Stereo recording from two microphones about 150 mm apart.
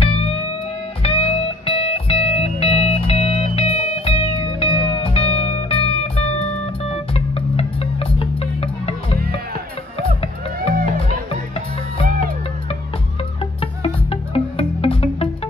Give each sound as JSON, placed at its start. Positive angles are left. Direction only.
{"t": 0.0, "sound": "music", "side_deg": 40}
{"t": 9.9, "sound": "music", "side_deg": 40}
{"t": 13.6, "sound": "music", "side_deg": 40}